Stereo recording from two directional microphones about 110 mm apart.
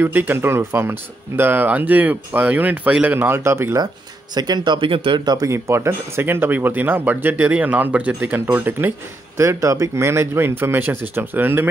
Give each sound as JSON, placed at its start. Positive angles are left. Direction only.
{"t": 0.0, "sound": "speech", "side_deg": -20}
{"t": 3.8, "sound": "speech", "side_deg": -40}
{"t": 5.2, "sound": "speech", "side_deg": -35}